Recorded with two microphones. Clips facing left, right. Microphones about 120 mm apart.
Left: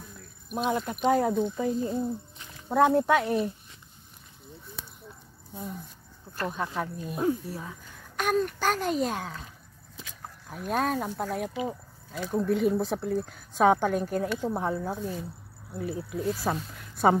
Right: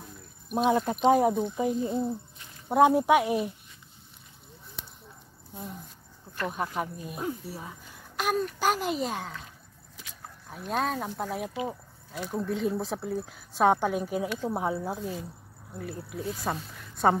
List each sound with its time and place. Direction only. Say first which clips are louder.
0.7 s speech: right 3 dB; 25° right (ahead or behind)
6.5 s speech: even; 10° right (ahead or behind)
10.5 s speech: left 2 dB; 5° left (ahead or behind)
15.7 s speech: left 5 dB; centre (ahead or behind)